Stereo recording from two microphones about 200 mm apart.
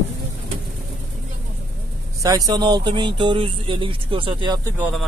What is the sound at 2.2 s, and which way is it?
Speech, 20° right (ahead or behind).